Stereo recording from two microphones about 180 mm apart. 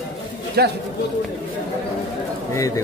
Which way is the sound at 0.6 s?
60° right (ahead or behind).